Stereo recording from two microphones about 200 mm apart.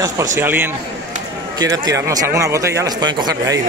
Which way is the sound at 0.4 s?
10° right (ahead or behind).